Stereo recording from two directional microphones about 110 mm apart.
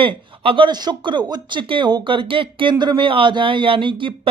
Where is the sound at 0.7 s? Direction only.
40° right (ahead or behind).